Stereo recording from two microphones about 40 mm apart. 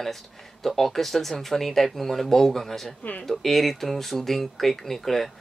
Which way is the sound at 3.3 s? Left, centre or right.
Centre.